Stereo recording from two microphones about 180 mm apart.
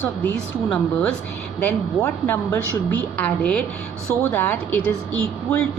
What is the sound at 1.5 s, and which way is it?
A woman's voice, 10° left (ahead or behind).